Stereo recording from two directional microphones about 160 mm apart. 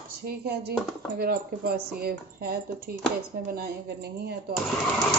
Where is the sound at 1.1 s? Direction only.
70° right (ahead or behind).